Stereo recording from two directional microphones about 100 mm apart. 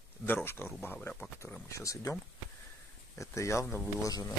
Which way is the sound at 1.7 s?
35° left (ahead or behind).